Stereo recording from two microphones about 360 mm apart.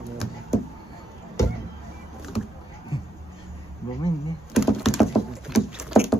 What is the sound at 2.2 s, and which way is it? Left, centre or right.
Vehicle, centre.